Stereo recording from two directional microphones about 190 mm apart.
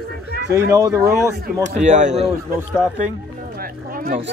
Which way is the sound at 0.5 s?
15° right (ahead or behind).